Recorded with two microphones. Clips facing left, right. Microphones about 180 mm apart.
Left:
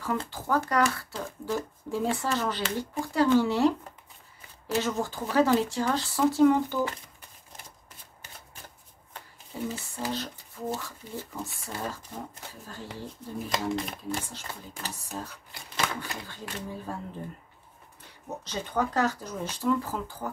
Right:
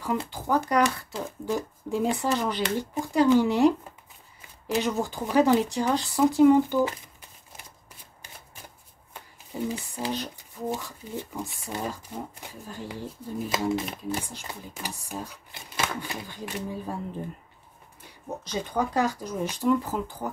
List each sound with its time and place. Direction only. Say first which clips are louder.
0.0 s speech: right 2 dB; 15° right (ahead or behind)
8.2 s shuffling cards: right 1 dB; 10° right (ahead or behind)
11.7 s speech: right 3 dB; 15° right (ahead or behind)
13.5 s speech: right 3 dB; 5° right (ahead or behind)
18.4 s speech: right 1 dB; 15° right (ahead or behind)